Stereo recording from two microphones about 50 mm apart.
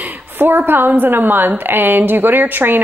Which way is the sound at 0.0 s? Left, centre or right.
Right.